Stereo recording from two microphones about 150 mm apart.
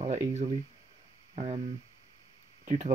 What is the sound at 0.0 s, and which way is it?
Speech, 45° right (ahead or behind).